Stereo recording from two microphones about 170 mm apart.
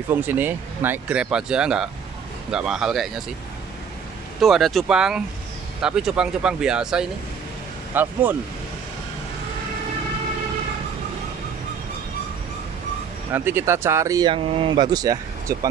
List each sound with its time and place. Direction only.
0.1 s speech: 10° right (ahead or behind)
4.4 s speech: centre (ahead or behind)
13.3 s speech: 10° right (ahead or behind)